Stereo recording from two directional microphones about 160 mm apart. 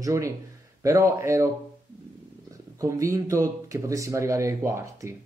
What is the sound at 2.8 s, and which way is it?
Speech, 20° right (ahead or behind).